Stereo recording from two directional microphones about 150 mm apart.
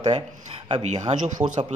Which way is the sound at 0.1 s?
45° right (ahead or behind).